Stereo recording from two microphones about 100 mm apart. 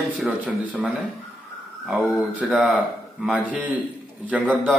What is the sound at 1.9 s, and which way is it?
A man's voice, 10° right (ahead or behind).